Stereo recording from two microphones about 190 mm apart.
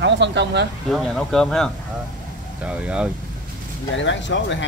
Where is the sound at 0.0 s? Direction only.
65° right (ahead or behind).